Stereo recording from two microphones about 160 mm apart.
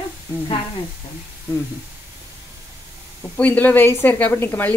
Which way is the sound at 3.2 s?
10° left (ahead or behind).